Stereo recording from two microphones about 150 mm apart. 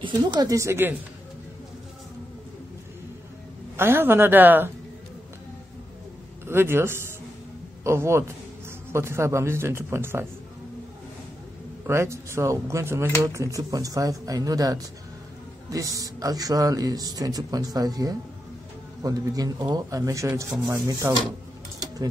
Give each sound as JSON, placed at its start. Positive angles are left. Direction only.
{"t": 0.0, "sound": "speech", "side_deg": -30}
{"t": 3.7, "sound": "speech", "side_deg": -15}
{"t": 6.4, "sound": "speech", "side_deg": -15}
{"t": 11.8, "sound": "speech", "side_deg": -15}
{"t": 21.8, "sound": "a sound", "side_deg": -25}